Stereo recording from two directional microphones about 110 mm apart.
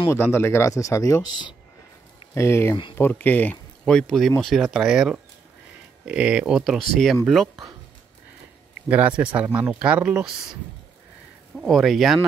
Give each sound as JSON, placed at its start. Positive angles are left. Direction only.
{"t": 0.1, "sound": "speech", "side_deg": 20}
{"t": 2.3, "sound": "speech", "side_deg": 25}
{"t": 8.8, "sound": "speech", "side_deg": -10}